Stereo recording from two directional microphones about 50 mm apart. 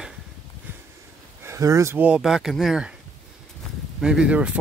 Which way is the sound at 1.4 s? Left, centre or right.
Right.